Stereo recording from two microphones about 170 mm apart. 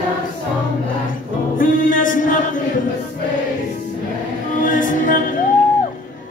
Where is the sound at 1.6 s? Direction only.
50° left (ahead or behind).